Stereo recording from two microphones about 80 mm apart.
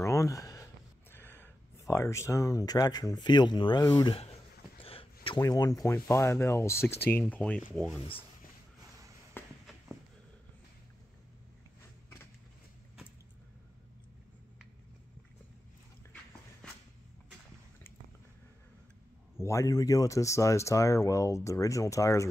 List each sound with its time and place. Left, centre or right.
0.0 s a sound: left
1.1 s a sound: left
1.9 s speech: left
5.4 s speech: left; by 7.6 s centre
9.4 s walk: left
19.3 s speech: left